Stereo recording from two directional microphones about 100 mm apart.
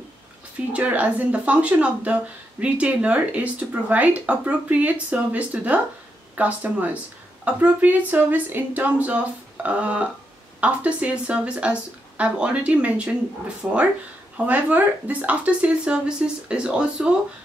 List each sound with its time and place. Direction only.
0.7 s a woman's voice: 15° right (ahead or behind)